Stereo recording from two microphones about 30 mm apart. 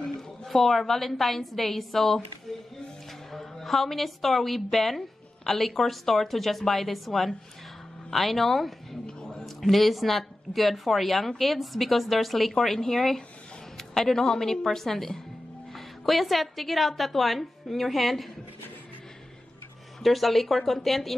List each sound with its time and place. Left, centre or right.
0.5 s a woman's voice: centre
3.3 s a woman's voice: centre
9.0 s a sound: left
9.6 s a woman's voice: centre
15.7 s speech: centre
20.0 s speech: centre